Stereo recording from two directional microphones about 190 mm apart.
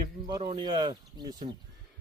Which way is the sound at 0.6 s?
20° right (ahead or behind).